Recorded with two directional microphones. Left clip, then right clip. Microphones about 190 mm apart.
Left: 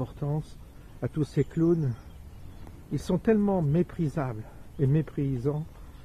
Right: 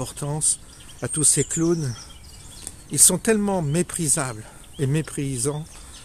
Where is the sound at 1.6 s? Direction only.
30° right (ahead or behind).